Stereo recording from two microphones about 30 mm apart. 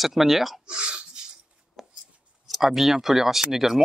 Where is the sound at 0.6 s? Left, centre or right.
Right.